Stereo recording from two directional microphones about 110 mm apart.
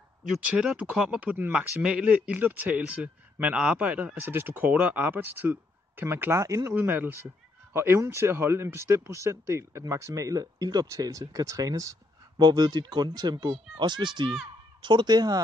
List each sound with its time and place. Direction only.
0.4 s speech: 10° right (ahead or behind); by 15.4 s 35° right (ahead or behind)